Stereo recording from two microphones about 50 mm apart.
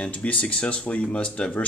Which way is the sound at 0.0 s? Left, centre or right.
Left.